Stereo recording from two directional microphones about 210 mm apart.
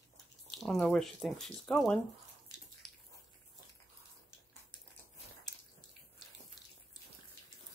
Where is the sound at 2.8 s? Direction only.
Centre (ahead or behind).